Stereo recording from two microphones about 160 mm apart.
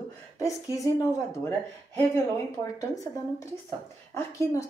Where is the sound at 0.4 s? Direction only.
20° left (ahead or behind).